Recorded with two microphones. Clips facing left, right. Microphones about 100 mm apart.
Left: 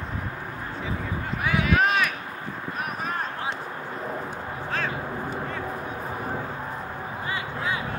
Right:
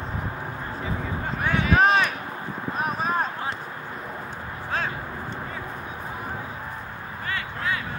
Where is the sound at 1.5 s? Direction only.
30° right (ahead or behind).